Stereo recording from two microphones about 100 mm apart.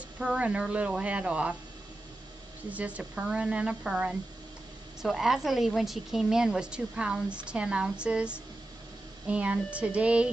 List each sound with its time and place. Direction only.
0.2 s a woman's voice: 10° right (ahead or behind)
2.7 s a woman's voice: 15° right (ahead or behind)